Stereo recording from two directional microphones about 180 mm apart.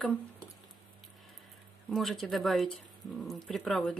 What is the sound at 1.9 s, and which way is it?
Speech, centre (ahead or behind).